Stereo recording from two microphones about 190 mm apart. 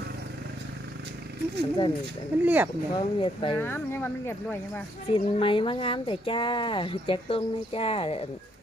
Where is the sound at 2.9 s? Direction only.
25° left (ahead or behind).